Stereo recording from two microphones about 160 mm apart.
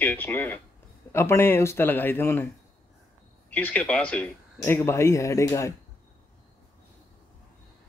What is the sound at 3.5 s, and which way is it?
Speech, 10° left (ahead or behind).